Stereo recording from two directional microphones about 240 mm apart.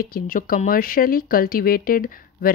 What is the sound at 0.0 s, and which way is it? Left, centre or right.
Speech, left.